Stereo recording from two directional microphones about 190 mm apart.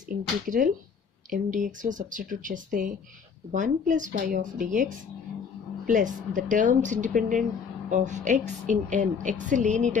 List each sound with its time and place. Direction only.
0.5 s a woman's voice: 45° right (ahead or behind)